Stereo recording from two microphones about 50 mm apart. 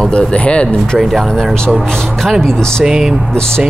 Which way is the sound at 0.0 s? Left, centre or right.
Centre.